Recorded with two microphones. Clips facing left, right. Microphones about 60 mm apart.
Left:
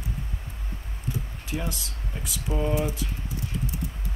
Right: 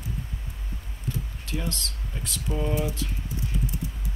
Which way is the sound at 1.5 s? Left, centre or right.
Centre.